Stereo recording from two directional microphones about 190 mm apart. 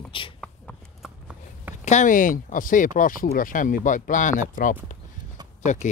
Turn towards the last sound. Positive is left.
turn(degrees=40)  # may be behind; listen again after turning